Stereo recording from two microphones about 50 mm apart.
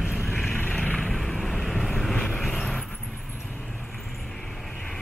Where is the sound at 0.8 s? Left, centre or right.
Centre.